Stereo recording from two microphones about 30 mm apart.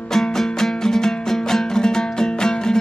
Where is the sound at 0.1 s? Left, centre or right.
Centre.